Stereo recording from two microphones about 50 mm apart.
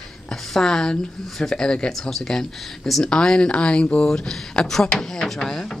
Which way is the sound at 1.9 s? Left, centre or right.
Centre.